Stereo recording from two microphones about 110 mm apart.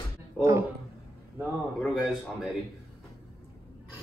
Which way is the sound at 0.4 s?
25° right (ahead or behind).